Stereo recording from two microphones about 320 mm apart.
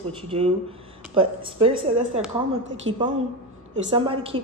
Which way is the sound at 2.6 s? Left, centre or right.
Right.